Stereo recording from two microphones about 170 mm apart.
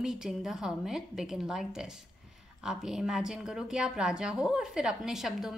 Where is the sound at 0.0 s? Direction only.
5° right (ahead or behind).